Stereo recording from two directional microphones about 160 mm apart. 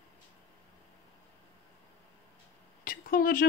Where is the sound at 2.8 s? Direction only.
65° left (ahead or behind).